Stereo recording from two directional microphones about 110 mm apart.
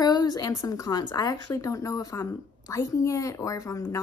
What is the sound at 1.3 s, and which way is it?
A woman's voice, 30° left (ahead or behind).